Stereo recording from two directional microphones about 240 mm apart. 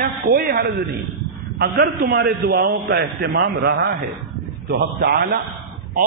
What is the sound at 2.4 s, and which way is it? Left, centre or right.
A man's voice, right.